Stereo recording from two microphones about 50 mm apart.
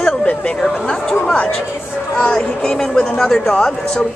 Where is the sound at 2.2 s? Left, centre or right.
Centre.